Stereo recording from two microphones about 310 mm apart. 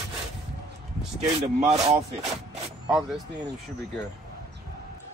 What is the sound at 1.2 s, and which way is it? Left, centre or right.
Speech, centre.